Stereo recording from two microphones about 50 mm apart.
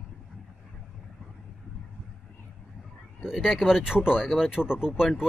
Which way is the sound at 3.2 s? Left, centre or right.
Centre.